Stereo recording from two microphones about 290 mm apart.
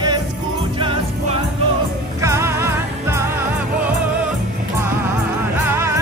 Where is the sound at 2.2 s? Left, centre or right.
Centre.